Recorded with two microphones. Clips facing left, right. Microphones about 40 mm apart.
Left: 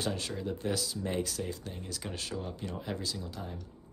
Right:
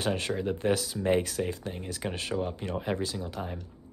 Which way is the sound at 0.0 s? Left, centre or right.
Right.